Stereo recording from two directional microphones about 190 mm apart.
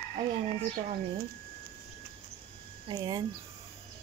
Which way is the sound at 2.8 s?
20° right (ahead or behind).